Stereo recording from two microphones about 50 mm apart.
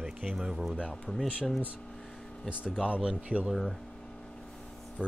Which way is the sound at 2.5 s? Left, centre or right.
Right.